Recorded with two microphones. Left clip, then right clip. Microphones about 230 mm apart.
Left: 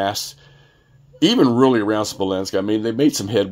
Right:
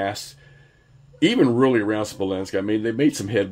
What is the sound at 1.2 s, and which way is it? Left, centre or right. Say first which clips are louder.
Speech: left 3 dB; centre.